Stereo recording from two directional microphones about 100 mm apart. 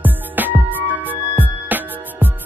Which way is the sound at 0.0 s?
20° right (ahead or behind).